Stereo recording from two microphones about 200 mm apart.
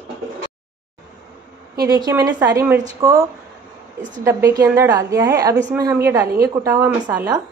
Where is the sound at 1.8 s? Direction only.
20° right (ahead or behind).